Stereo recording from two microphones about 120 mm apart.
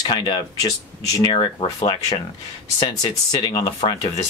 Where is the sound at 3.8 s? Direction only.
50° left (ahead or behind).